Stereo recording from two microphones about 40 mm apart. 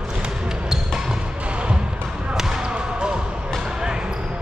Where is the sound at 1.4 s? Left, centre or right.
Right.